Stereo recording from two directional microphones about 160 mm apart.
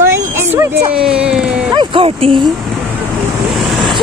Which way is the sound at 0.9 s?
5° right (ahead or behind).